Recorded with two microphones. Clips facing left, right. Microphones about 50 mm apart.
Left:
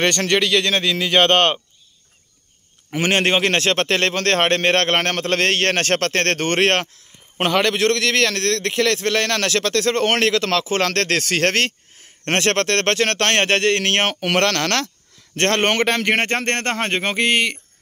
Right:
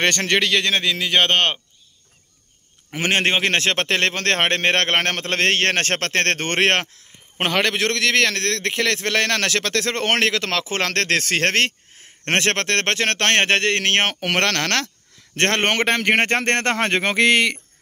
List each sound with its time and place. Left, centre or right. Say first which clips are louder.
0.0 s a man's voice: left 1 dB; right
0.7 s a man's voice: left 1 dB; centre
3.0 s a man's voice: left 2 dB; centre
16.3 s speech: right 2 dB; right